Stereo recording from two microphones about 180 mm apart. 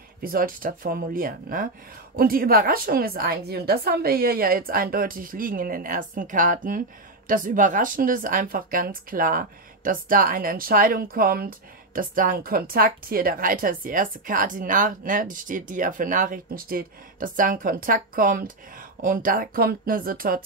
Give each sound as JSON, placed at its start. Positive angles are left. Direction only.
{"t": 0.2, "sound": "a woman's voice", "side_deg": -55}